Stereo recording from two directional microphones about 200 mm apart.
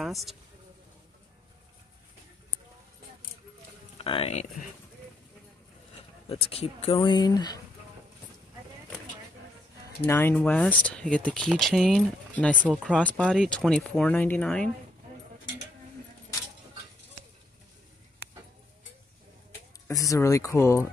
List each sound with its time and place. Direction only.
0.0 s speech: centre (ahead or behind)
4.0 s speech: 30° left (ahead or behind)
6.2 s speech: 30° left (ahead or behind)
10.0 s speech: 10° left (ahead or behind)
19.9 s speech: 15° left (ahead or behind)